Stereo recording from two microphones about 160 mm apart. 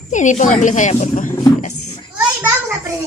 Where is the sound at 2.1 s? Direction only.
15° right (ahead or behind).